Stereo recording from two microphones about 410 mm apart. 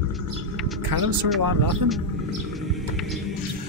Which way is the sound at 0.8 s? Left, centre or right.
Right.